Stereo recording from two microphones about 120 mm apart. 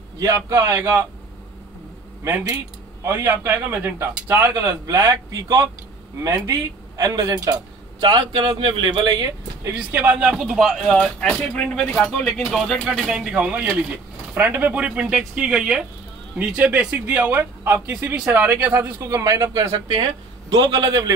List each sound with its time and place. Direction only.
0.2 s a man's voice: 25° right (ahead or behind)
2.2 s a man's voice: 25° right (ahead or behind)
4.6 s a man's voice: 30° right (ahead or behind)
7.0 s a man's voice: 30° right (ahead or behind)
9.8 s speech: 15° right (ahead or behind)
11.0 s speech: 10° left (ahead or behind); by 19.8 s 25° right (ahead or behind)
19.9 s a man's voice: 40° right (ahead or behind)